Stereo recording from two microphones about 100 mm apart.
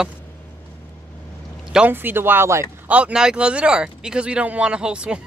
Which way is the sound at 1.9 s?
20° right (ahead or behind).